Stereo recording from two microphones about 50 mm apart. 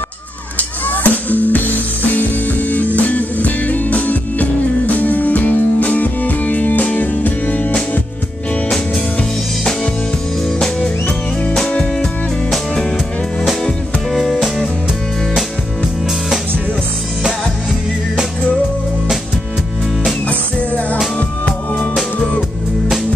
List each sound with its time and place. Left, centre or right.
0.6 s music: left
10.8 s music: left
14.1 s music: centre
20.2 s music: left